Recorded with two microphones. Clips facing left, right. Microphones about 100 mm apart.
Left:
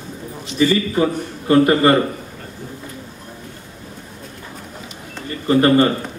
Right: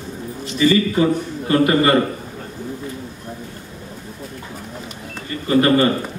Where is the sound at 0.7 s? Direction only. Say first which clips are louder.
Right 2 dB; 30° left (ahead or behind).